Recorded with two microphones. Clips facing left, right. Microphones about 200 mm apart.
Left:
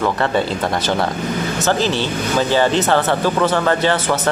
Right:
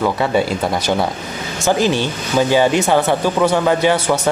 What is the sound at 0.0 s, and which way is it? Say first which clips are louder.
Speech: right 1 dB; 10° right (ahead or behind).